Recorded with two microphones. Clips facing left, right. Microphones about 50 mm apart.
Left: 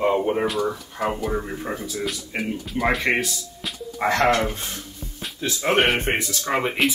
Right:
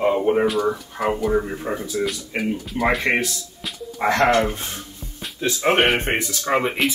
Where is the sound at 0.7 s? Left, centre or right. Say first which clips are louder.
Right 3 dB; centre.